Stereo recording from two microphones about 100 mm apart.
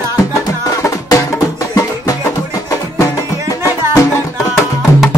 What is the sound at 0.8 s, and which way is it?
Music, 35° left (ahead or behind).